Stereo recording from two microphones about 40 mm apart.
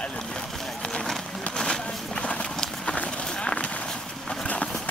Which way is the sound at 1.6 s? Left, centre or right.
Left.